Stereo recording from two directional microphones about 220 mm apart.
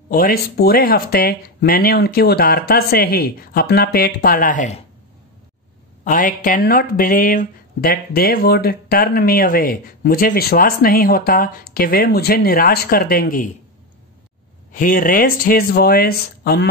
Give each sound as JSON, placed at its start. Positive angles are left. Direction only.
{"t": 0.1, "sound": "speech", "side_deg": 45}
{"t": 6.0, "sound": "speech", "side_deg": 40}
{"t": 14.7, "sound": "speech", "side_deg": 40}